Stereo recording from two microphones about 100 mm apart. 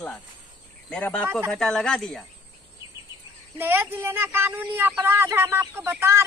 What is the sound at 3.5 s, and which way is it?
Speech, 20° right (ahead or behind).